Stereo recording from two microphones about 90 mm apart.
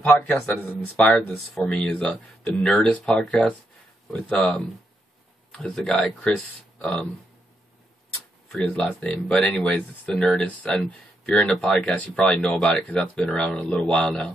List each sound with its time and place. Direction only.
0.1 s speech: 10° left (ahead or behind)
0.4 s speech: 25° left (ahead or behind)
1.5 s speech: 5° left (ahead or behind)
8.5 s speech: centre (ahead or behind)
8.7 s speech: 15° left (ahead or behind)